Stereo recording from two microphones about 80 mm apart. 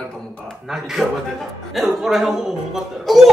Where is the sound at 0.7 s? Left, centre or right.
Centre.